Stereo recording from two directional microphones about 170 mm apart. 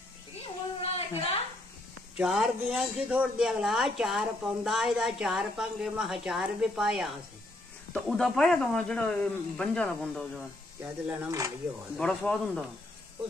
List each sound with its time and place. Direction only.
0.8 s a sound: 35° left (ahead or behind)
2.1 s speech: 5° right (ahead or behind)
10.8 s speech: 15° right (ahead or behind)
12.0 s speech: 5° left (ahead or behind)